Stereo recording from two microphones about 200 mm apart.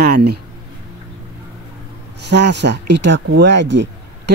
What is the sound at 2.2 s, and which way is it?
Speech, 60° right (ahead or behind).